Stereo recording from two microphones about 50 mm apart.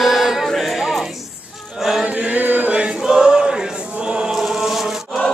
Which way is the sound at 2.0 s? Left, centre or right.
Right.